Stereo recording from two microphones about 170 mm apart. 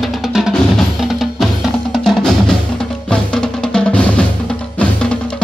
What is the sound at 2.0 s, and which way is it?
Music, centre (ahead or behind).